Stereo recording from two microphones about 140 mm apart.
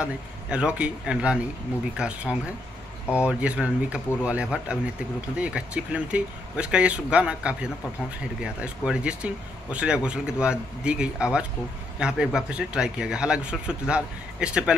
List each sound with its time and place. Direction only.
0.0 s speech: 5° right (ahead or behind)